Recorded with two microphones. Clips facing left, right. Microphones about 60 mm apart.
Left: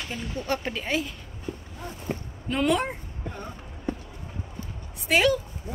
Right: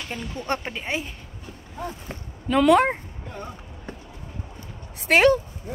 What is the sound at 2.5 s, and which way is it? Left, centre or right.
Speech, right.